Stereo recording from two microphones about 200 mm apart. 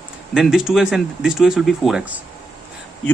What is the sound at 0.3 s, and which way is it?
Speech, 5° right (ahead or behind).